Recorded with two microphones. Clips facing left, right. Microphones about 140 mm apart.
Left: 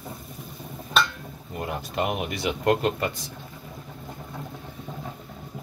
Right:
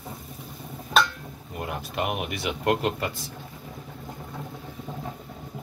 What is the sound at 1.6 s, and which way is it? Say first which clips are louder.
Speech: left 2 dB; 5° right (ahead or behind).